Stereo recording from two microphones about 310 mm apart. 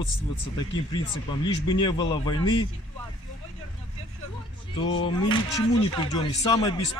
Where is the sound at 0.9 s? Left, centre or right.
Centre.